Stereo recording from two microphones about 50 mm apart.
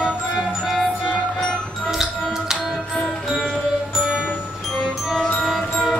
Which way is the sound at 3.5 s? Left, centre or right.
Centre.